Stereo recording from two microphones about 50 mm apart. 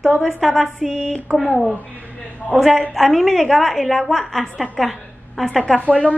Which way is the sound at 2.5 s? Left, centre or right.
Centre.